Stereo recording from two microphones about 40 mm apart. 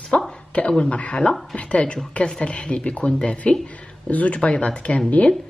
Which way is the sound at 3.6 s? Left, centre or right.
Left.